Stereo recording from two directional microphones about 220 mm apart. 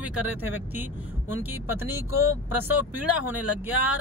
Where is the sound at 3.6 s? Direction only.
10° right (ahead or behind).